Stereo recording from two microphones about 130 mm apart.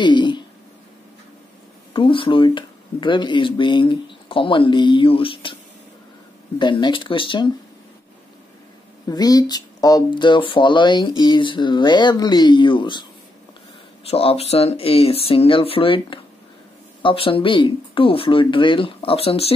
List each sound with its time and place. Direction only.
0.0 s a sound: 35° left (ahead or behind)
2.0 s speech: 40° left (ahead or behind)
6.6 s speech: 35° left (ahead or behind)
9.0 s speech: 30° left (ahead or behind)
14.0 s speech: 50° left (ahead or behind)